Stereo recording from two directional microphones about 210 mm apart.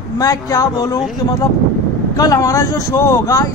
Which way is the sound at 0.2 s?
15° left (ahead or behind).